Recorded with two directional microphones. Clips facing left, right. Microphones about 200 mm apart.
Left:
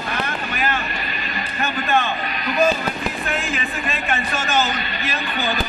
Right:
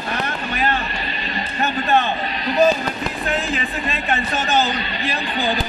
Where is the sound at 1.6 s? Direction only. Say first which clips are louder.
Right 2 dB; 35° right (ahead or behind).